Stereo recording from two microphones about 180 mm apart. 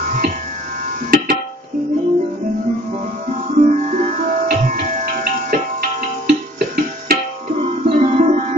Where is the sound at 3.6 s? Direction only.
40° right (ahead or behind).